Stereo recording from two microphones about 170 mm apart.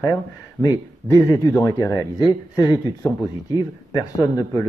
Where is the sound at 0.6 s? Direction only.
20° left (ahead or behind).